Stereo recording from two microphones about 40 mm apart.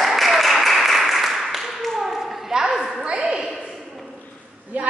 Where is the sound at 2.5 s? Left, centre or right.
Centre.